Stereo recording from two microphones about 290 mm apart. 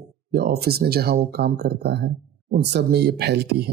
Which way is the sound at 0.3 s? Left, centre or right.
Right.